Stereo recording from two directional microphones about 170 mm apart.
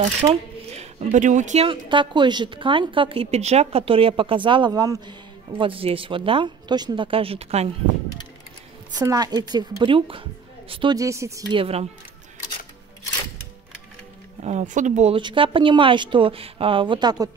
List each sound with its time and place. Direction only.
0.0 s shuffling cards: 40° right (ahead or behind)
1.1 s speech: 45° right (ahead or behind)
1.7 s a woman's voice: 30° right (ahead or behind)
5.6 s speech: 30° right (ahead or behind)
9.0 s a woman's voice: 20° right (ahead or behind)
11.5 s speech: 35° right (ahead or behind)
14.4 s speech: 40° right (ahead or behind)
15.1 s a woman's voice: 30° right (ahead or behind)